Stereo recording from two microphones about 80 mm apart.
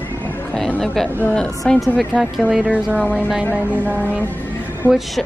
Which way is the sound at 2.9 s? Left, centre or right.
Centre.